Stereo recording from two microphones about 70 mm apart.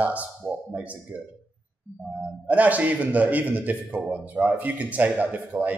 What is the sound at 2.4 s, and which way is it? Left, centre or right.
A man's voice, right.